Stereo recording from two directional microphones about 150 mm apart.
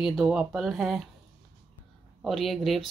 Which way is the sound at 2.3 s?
Centre (ahead or behind).